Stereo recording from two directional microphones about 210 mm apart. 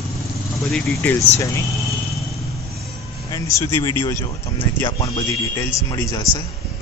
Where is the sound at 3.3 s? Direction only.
15° left (ahead or behind).